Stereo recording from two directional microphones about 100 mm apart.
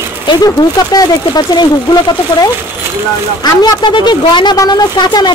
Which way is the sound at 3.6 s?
50° left (ahead or behind).